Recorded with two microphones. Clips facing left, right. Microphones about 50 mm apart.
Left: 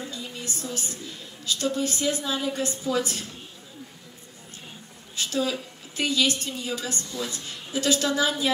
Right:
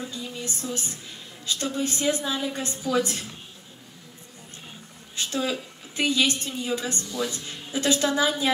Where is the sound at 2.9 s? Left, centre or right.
Right.